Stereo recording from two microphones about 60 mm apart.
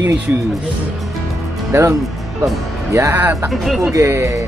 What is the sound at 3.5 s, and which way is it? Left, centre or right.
Speech, centre.